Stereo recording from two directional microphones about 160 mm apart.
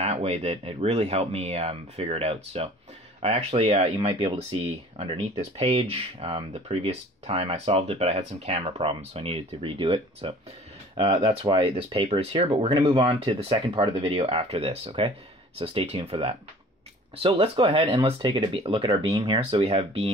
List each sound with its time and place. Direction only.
0.0 s speech: 40° right (ahead or behind)